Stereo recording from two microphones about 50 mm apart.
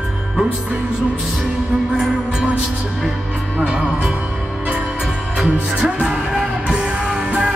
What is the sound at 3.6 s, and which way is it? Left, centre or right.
Music, centre.